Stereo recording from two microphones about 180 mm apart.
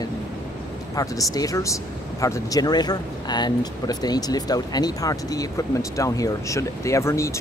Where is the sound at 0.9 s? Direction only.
20° left (ahead or behind).